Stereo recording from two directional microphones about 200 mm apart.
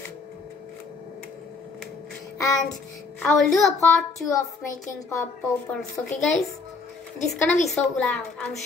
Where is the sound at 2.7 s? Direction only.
Centre (ahead or behind).